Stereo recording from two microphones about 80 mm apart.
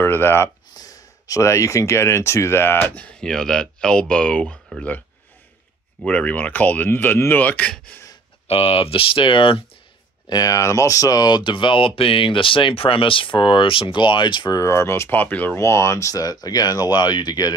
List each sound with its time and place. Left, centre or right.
0.0 s speech: left
0.7 s speech: left
3.1 s speech: centre
6.0 s speech: centre
9.0 s speech: left
10.2 s speech: left
14.6 s speech: left
15.6 s speech: left